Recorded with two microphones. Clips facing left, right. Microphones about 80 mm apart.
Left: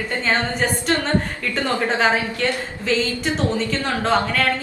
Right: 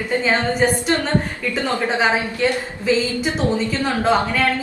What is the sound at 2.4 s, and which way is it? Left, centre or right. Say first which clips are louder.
Speech: right 3 dB; centre.